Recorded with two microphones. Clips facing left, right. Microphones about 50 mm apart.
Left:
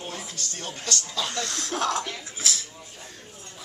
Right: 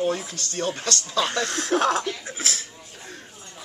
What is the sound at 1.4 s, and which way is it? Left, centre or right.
Speech, right.